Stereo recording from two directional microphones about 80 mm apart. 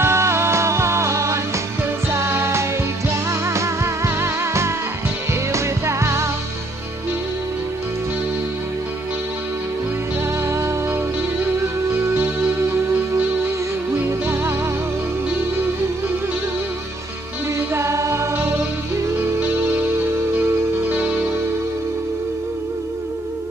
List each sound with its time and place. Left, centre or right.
0.0 s music: right
13.9 s music: right
17.7 s music: right